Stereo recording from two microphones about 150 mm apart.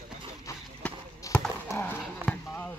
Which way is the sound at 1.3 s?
20° left (ahead or behind).